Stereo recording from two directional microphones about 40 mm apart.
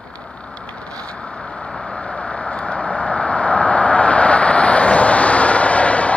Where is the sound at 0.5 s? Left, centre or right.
Left.